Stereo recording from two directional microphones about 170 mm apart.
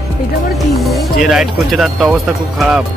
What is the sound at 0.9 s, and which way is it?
Speech, centre (ahead or behind).